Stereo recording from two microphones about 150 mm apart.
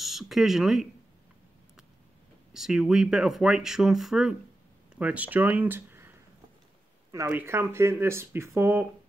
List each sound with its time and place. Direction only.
0.0 s speech: centre (ahead or behind)
2.5 s speech: 5° right (ahead or behind)